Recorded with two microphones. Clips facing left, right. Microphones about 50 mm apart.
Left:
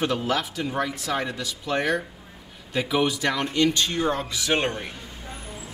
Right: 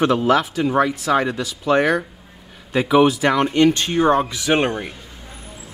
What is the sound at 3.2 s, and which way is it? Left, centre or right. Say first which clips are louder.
Speech: right 7 dB; right.